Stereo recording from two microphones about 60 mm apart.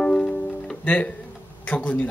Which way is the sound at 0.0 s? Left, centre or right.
Centre.